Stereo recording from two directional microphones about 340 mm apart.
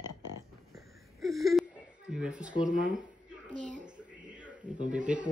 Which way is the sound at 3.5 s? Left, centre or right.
Right.